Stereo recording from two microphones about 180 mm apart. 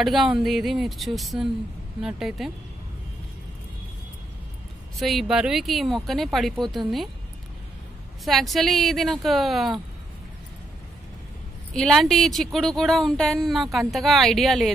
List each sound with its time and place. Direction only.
0.0 s speech: centre (ahead or behind)
4.9 s speech: centre (ahead or behind)
8.3 s speech: centre (ahead or behind)
11.7 s speech: centre (ahead or behind)